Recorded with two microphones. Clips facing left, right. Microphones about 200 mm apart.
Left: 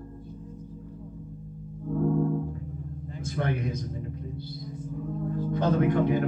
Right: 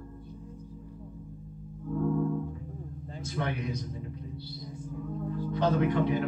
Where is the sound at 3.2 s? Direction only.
50° left (ahead or behind).